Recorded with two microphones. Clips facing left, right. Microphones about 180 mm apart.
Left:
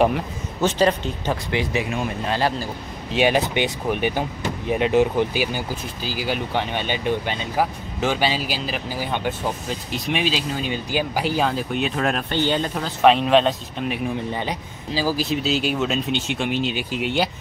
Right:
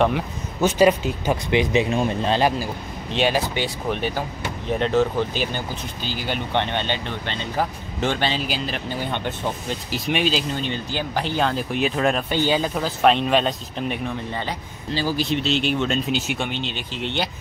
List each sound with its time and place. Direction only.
0.6 s speech: 10° right (ahead or behind)
3.2 s speech: 20° left (ahead or behind); by 13.9 s centre (ahead or behind)
14.3 s speech: 15° left (ahead or behind)
14.9 s speech: 5° left (ahead or behind)